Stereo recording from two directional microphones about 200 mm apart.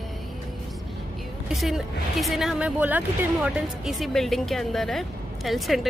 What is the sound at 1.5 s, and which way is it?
Speech, centre (ahead or behind).